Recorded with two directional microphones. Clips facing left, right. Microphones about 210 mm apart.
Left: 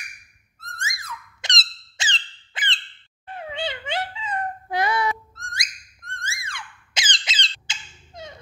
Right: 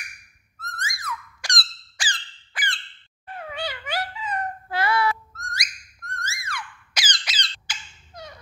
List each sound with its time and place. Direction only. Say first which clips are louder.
0.7 s squeak: right 3 dB; 25° left (ahead or behind)
3.3 s cat: left 2 dB; 25° left (ahead or behind)
5.3 s a sound: right 1 dB; 30° left (ahead or behind)